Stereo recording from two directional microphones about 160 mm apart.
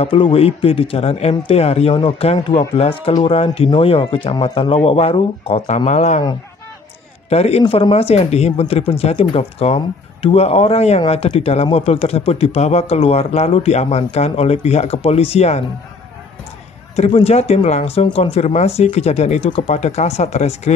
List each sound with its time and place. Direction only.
0.0 s speech: 35° left (ahead or behind)
7.2 s speech: 40° left (ahead or behind)
16.9 s speech: 40° left (ahead or behind)